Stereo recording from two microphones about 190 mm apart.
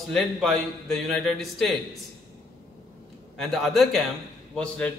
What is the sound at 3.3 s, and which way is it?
A man's voice, centre (ahead or behind).